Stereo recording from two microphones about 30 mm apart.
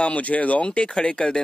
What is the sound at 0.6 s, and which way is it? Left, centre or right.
Speech, left.